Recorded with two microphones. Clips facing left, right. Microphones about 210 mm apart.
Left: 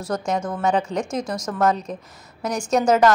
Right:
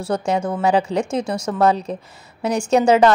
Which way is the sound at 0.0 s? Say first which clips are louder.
Right 3 dB; 30° right (ahead or behind).